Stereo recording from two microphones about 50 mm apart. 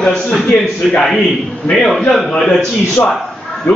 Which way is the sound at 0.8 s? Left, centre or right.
Centre.